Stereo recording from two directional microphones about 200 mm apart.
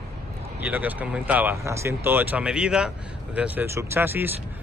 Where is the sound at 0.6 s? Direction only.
5° right (ahead or behind).